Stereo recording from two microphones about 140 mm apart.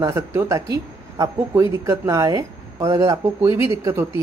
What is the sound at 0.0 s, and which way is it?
Speech, 20° right (ahead or behind).